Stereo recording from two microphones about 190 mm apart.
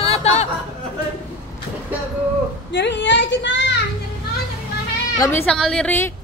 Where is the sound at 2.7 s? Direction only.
70° left (ahead or behind).